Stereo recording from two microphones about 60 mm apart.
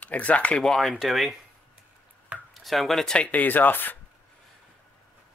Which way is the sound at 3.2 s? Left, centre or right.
Left.